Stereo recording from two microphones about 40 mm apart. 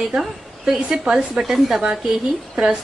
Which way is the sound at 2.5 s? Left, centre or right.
Right.